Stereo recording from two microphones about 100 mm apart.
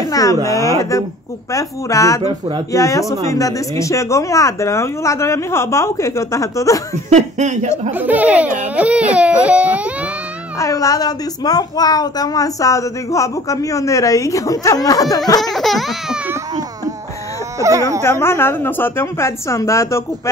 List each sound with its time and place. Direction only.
0.1 s speech: 35° left (ahead or behind)
2.2 s speech: 70° right (ahead or behind)
2.7 s speech: 35° left (ahead or behind)
7.9 s speech: 15° right (ahead or behind)
10.6 s speech: 35° left (ahead or behind)
15.5 s crying: centre (ahead or behind)
17.6 s speech: 30° right (ahead or behind)
18.2 s a woman's voice: 25° left (ahead or behind)